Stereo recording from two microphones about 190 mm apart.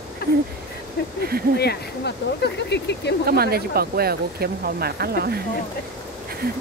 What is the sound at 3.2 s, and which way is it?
Speech, 55° right (ahead or behind).